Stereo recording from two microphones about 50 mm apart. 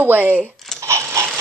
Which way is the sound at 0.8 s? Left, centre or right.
Right.